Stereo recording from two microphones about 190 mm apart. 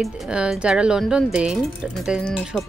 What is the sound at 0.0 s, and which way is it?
A woman's voice, 5° right (ahead or behind).